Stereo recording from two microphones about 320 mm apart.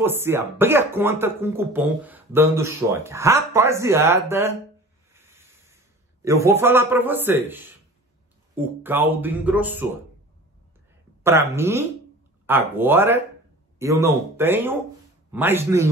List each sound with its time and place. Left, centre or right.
0.0 s speech: centre
5.1 s a sound: centre
6.2 s speech: centre
11.2 s speech: centre